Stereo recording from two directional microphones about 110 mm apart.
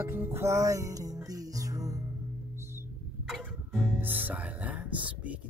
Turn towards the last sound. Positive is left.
turn(degrees=-15)  # may be behind; listen again after turning